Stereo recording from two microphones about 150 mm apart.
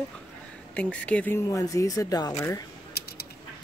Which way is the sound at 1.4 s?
20° left (ahead or behind).